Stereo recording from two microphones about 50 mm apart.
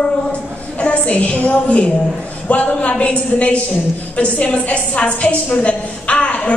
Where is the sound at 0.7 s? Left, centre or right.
Left.